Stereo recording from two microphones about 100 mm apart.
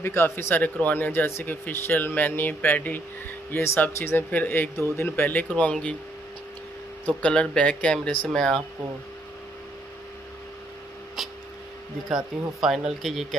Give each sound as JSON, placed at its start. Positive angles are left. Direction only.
{"t": 0.0, "sound": "speech", "side_deg": 25}
{"t": 7.1, "sound": "speech", "side_deg": 10}
{"t": 11.2, "sound": "a sound", "side_deg": 0}
{"t": 12.5, "sound": "speech", "side_deg": -5}